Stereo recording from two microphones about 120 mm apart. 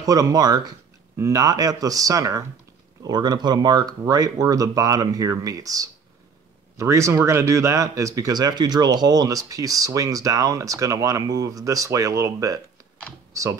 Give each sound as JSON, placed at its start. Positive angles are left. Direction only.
{"t": 0.0, "sound": "speech", "side_deg": -30}